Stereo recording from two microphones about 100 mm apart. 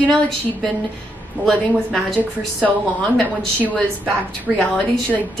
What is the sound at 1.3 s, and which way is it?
Speech, 20° right (ahead or behind).